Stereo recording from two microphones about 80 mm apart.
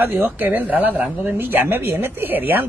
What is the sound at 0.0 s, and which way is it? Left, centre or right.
A woman's voice, right.